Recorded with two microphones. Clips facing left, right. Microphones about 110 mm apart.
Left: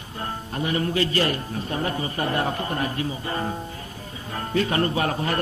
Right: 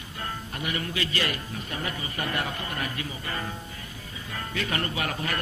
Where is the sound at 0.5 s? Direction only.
30° left (ahead or behind).